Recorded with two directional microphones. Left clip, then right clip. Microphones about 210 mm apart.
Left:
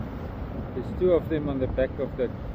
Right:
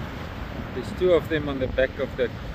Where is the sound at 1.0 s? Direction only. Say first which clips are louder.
Right 2 dB; 5° right (ahead or behind).